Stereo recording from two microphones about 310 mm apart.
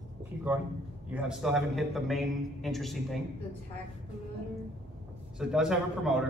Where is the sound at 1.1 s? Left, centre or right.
Centre.